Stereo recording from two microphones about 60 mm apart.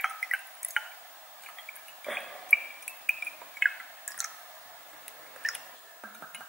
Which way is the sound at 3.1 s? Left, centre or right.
Centre.